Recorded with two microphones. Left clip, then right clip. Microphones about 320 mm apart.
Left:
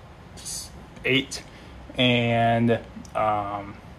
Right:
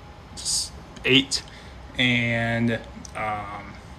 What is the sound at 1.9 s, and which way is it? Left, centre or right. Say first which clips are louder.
Speech: left 1 dB; left.